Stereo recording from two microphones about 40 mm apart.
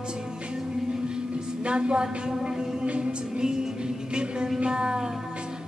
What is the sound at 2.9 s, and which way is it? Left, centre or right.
Music, right.